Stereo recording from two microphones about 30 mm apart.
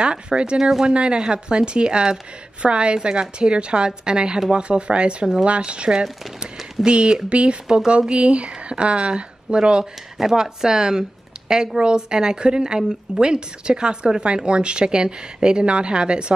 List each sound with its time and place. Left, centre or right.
0.0 s speech: right
0.6 s speech: centre
0.8 s a woman's voice: right